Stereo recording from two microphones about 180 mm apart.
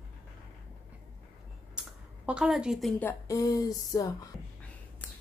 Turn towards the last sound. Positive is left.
turn(degrees=20)  # may be behind; listen again after turning